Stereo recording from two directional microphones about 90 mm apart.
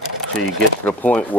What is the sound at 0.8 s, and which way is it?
Speech, 20° left (ahead or behind).